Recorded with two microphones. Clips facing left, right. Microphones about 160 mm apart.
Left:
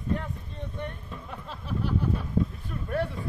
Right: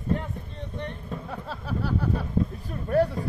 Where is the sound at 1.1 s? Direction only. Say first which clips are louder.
Right 5 dB; 40° right (ahead or behind).